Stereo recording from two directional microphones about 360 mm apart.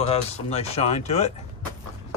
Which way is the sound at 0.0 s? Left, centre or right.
Centre.